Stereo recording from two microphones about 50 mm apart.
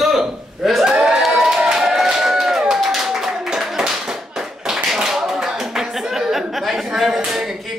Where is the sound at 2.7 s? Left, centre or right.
Centre.